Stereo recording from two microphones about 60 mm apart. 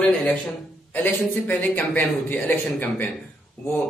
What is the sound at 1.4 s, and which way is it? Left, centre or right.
A man's voice, left.